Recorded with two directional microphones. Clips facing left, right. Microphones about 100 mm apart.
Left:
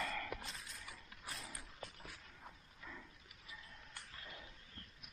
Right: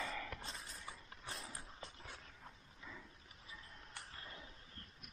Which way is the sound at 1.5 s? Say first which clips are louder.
Even; 30° right (ahead or behind).